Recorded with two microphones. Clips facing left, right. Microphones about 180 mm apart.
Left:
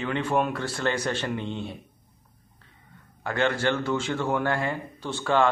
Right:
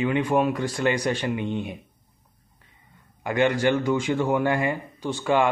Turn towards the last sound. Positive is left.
turn(degrees=-10)  # may be behind; listen again after turning